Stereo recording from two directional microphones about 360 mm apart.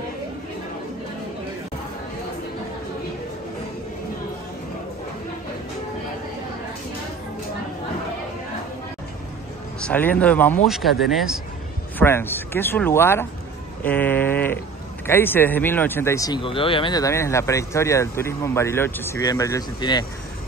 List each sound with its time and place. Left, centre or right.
9.8 s speech: centre
13.8 s a sound: centre
15.0 s speech: centre